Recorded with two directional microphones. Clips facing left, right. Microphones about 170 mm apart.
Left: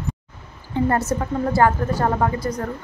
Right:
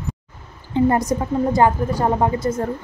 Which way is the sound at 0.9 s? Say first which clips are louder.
Even; 15° right (ahead or behind).